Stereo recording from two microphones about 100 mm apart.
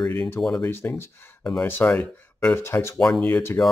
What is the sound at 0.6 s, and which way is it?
Speech, 25° left (ahead or behind).